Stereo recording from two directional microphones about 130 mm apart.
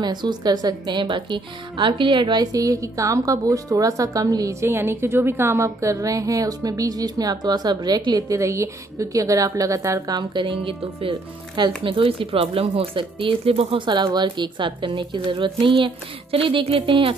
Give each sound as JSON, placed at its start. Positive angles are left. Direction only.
{"t": 0.0, "sound": "speech", "side_deg": -35}